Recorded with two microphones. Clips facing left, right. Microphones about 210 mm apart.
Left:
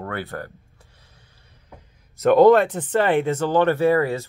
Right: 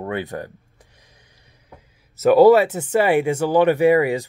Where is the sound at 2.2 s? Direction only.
5° right (ahead or behind).